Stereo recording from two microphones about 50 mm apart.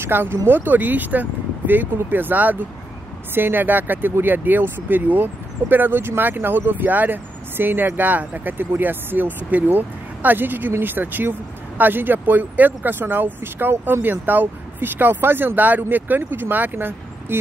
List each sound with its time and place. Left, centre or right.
0.0 s speech: right
0.5 s speech: right